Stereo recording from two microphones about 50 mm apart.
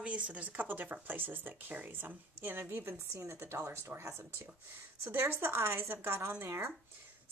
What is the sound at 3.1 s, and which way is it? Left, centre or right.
Speech, right.